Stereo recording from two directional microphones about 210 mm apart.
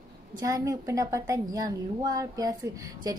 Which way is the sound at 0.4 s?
15° right (ahead or behind).